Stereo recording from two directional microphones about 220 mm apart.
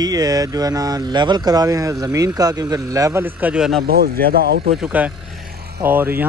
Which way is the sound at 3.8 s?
45° right (ahead or behind).